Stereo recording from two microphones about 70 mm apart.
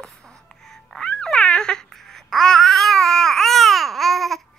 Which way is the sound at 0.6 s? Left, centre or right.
Centre.